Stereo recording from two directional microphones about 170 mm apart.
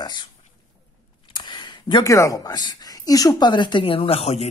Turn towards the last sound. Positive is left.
turn(degrees=40)  # may be behind; listen again after turning